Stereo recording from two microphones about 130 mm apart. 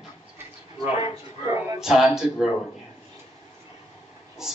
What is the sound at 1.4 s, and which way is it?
Speech, 20° right (ahead or behind).